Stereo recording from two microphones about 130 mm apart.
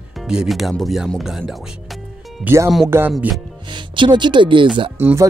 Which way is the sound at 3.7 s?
35° right (ahead or behind).